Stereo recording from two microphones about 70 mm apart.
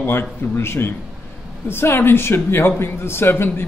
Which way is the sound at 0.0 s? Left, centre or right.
Left.